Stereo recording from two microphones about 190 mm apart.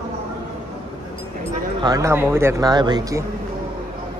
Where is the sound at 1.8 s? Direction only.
20° right (ahead or behind).